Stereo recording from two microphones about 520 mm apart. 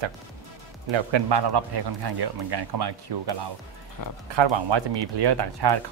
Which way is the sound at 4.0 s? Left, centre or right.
Left.